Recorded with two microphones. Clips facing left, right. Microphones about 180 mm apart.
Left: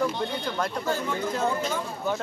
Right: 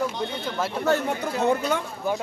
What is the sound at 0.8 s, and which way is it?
Speech, 70° right (ahead or behind).